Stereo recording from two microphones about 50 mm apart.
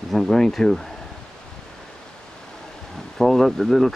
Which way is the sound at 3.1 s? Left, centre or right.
Centre.